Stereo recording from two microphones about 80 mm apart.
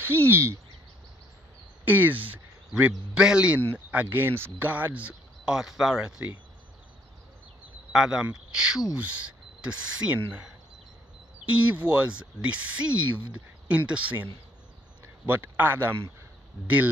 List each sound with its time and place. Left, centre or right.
0.0 s speech: right
1.9 s speech: right
3.2 s speech: centre
7.9 s speech: centre
11.4 s speech: centre
16.6 s speech: centre